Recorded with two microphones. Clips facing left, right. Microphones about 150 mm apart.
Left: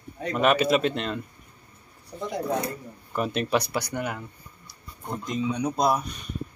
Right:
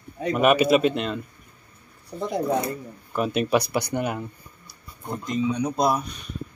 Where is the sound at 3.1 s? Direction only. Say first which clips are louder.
Right 3 dB; 5° right (ahead or behind).